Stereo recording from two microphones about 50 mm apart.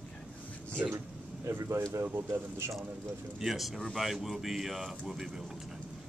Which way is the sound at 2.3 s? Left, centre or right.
Right.